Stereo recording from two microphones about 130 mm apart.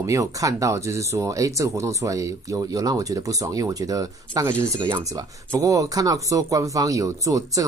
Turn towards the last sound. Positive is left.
turn(degrees=-25)  # may be behind; listen again after turning